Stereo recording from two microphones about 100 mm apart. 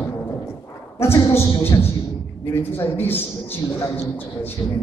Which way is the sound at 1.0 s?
25° left (ahead or behind).